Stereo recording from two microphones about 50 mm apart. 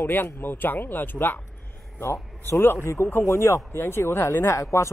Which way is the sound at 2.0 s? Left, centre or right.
Left.